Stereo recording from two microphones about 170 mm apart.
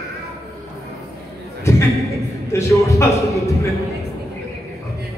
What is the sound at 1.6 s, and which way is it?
A man's voice, 15° left (ahead or behind).